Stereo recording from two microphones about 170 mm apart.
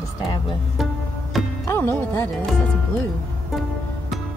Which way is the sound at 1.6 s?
15° left (ahead or behind).